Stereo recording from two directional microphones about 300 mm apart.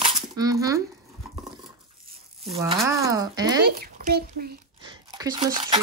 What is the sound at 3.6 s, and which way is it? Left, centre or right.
Speech, right.